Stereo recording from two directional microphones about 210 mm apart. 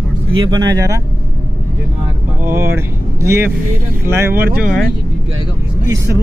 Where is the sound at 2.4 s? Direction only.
10° right (ahead or behind).